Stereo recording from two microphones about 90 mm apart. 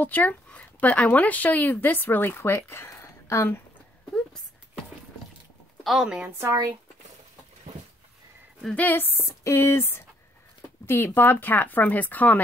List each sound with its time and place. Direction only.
0.0 s speech: 20° left (ahead or behind)
5.9 s speech: 5° right (ahead or behind)
8.7 s speech: 20° left (ahead or behind)